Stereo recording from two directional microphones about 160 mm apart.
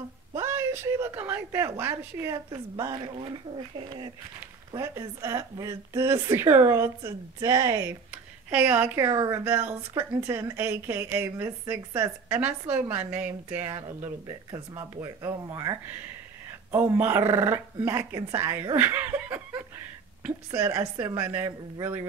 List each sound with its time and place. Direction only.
0.4 s a woman's voice: 15° right (ahead or behind)
4.7 s a woman's voice: 15° right (ahead or behind)
8.5 s a woman's voice: 10° right (ahead or behind)
14.2 s a woman's voice: 25° right (ahead or behind)